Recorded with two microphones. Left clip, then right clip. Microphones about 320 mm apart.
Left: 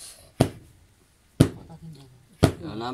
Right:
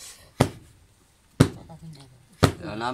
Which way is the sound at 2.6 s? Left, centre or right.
Centre.